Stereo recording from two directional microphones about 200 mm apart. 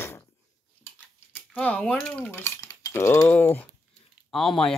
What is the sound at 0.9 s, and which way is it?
Cutlery, 5° left (ahead or behind).